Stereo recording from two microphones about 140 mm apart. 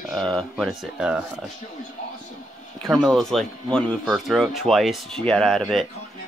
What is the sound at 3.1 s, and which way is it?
Speech, centre (ahead or behind).